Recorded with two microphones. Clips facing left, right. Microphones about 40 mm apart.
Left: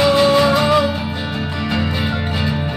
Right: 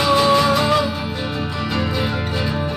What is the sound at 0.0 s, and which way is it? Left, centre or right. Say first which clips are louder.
Music: left 2 dB; centre.